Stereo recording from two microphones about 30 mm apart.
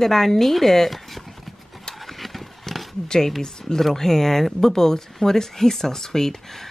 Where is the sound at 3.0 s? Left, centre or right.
Left.